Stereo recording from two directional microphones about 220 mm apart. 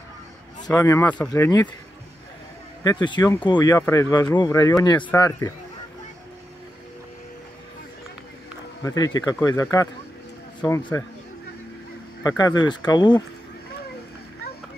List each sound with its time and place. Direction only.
0.7 s speech: 15° left (ahead or behind)
2.8 s speech: 20° left (ahead or behind)
8.8 s speech: 15° left (ahead or behind)
12.2 s speech: 15° left (ahead or behind)